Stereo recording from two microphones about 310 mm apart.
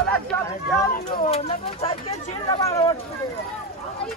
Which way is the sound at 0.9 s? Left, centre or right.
Left.